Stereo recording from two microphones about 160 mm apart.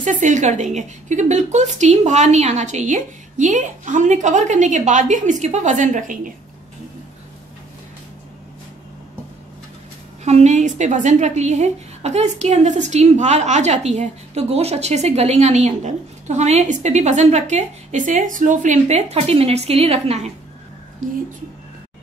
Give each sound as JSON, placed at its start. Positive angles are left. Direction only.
{"t": 0.0, "sound": "a woman's voice", "side_deg": -50}
{"t": 10.2, "sound": "a woman's voice", "side_deg": -45}